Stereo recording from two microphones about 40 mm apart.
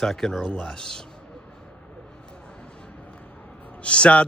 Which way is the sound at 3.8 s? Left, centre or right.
Left.